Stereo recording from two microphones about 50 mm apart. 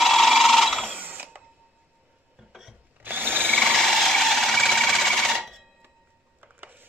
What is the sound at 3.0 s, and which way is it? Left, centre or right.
Tools, right.